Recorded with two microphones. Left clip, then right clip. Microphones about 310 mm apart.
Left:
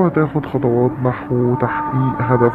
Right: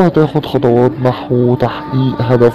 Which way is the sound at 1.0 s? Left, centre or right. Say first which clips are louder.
Right 5 dB; right.